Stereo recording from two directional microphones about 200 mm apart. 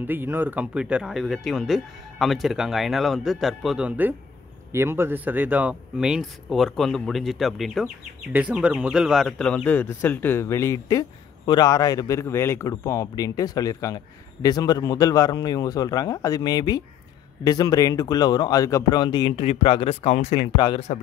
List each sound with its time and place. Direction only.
0.0 s speech: 10° right (ahead or behind); by 20.3 s 30° left (ahead or behind)
20.5 s speech: 20° left (ahead or behind)